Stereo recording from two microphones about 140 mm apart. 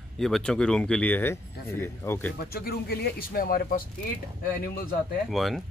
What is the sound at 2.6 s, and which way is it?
Speech, 90° left.